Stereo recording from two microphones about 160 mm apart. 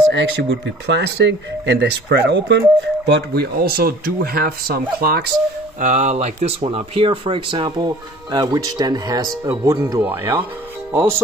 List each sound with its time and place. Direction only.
0.2 s speech: 90° right; by 5.3 s 70° right (ahead or behind)
5.8 s speech: 50° right (ahead or behind); by 11.1 s 15° right (ahead or behind)